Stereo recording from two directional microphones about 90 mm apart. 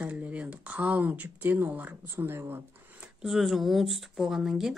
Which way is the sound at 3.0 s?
5° right (ahead or behind).